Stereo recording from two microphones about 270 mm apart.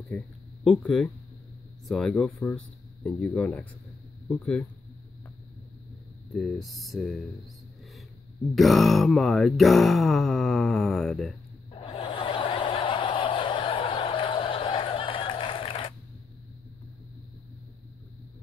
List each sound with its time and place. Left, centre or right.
0.1 s speech: centre
6.3 s speech: centre
8.5 s speech: centre
11.7 s a sound: centre